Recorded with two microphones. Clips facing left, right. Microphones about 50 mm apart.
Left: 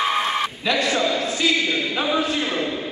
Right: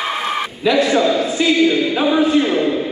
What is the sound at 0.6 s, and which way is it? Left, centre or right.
A man's voice, centre.